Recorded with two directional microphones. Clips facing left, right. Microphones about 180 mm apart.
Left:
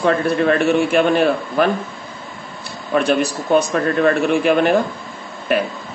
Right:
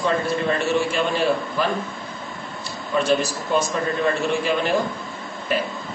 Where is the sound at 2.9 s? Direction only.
60° left (ahead or behind).